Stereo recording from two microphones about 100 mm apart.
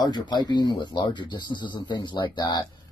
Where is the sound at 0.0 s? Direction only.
50° left (ahead or behind).